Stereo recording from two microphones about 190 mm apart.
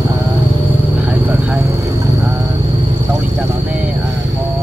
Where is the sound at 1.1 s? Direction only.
5° right (ahead or behind).